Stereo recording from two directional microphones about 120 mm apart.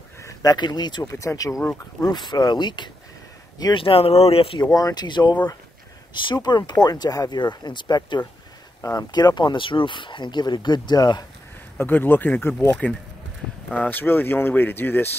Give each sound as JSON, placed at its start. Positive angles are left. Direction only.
{"t": 0.2, "sound": "speech", "side_deg": 30}
{"t": 1.6, "sound": "speech", "side_deg": 10}
{"t": 2.0, "sound": "speech", "side_deg": 35}
{"t": 3.8, "sound": "speech", "side_deg": 55}
{"t": 4.7, "sound": "speech", "side_deg": 35}
{"t": 11.8, "sound": "speech", "side_deg": 15}